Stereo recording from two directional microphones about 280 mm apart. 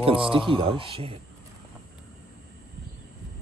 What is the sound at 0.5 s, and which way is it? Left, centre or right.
Speech, centre.